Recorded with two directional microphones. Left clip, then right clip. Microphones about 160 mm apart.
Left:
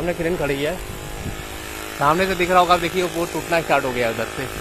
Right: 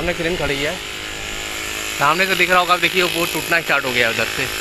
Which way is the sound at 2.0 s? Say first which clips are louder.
Right 2 dB; 5° left (ahead or behind).